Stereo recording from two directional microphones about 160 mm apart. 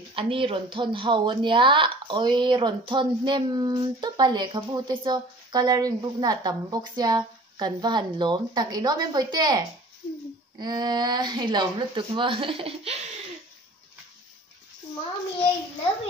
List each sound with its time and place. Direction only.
0.1 s a woman's voice: 35° right (ahead or behind)
10.6 s a woman's voice: 25° right (ahead or behind)